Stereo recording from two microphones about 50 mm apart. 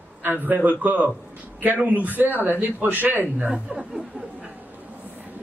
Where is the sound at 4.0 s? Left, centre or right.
Right.